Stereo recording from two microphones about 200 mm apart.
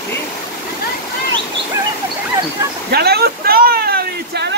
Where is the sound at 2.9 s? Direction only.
50° right (ahead or behind).